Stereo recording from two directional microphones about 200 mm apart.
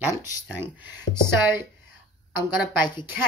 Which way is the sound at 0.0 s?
10° right (ahead or behind).